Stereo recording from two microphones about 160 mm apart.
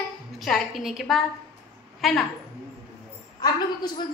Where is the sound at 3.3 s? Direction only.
25° left (ahead or behind).